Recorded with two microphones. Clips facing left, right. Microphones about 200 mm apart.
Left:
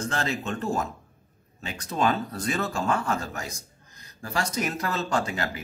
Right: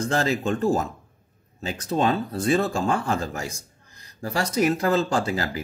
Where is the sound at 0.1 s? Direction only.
35° right (ahead or behind).